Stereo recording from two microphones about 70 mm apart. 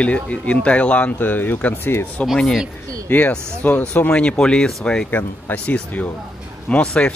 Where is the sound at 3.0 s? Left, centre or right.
Left.